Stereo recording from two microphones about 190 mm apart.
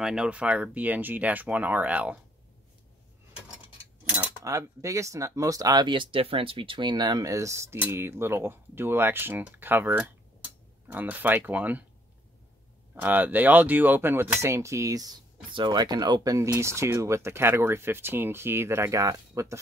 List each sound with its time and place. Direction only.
0.0 s speech: 5° right (ahead or behind)
3.4 s speech: 10° right (ahead or behind)
12.9 s speech: 10° right (ahead or behind)